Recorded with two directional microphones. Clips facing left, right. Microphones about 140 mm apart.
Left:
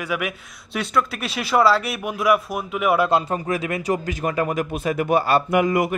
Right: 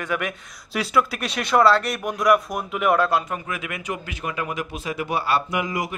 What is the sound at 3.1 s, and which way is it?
Speech, 30° left (ahead or behind).